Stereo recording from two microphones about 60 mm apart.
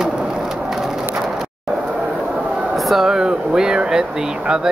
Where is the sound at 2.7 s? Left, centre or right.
Centre.